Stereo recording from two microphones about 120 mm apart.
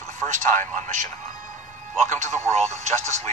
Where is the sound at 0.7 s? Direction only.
90° right; by 3.1 s 70° right (ahead or behind).